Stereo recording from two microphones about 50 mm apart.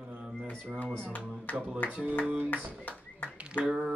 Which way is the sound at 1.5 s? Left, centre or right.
Right.